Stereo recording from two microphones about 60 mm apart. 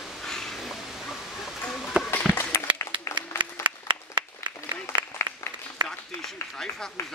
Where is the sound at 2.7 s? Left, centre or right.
Left.